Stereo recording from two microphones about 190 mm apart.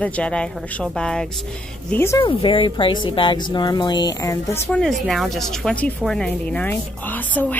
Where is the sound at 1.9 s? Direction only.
15° left (ahead or behind).